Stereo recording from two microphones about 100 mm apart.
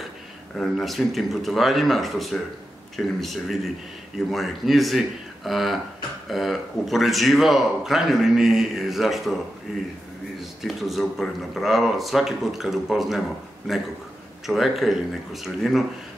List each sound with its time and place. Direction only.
0.6 s a man's voice: centre (ahead or behind)
10.6 s a man's voice: centre (ahead or behind)